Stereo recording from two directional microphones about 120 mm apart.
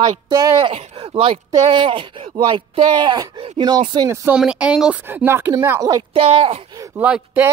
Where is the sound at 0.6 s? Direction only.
50° right (ahead or behind).